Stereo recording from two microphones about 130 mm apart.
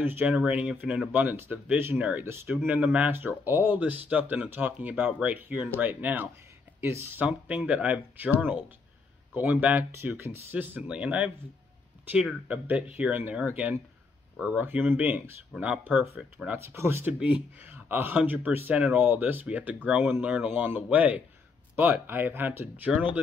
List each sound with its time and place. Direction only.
0.0 s speech: 15° right (ahead or behind)